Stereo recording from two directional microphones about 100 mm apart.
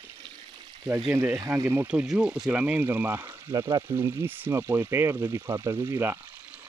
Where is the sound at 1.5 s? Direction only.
25° right (ahead or behind).